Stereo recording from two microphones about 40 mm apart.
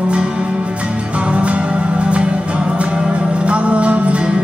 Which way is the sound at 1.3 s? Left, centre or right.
Right.